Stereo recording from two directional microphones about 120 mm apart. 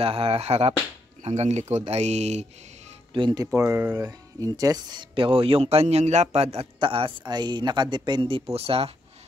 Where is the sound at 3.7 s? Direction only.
15° right (ahead or behind).